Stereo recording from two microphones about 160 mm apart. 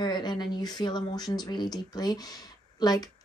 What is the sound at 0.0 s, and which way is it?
A woman's voice, 25° left (ahead or behind).